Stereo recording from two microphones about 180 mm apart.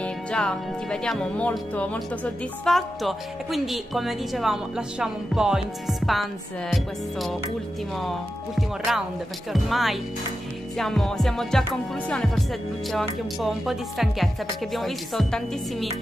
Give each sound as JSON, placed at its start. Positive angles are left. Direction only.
{"t": 0.0, "sound": "speech", "side_deg": 5}